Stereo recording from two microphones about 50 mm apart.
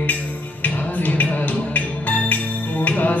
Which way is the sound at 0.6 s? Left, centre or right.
Left.